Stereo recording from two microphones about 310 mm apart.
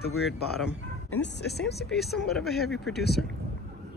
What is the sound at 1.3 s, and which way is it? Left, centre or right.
Speech, left.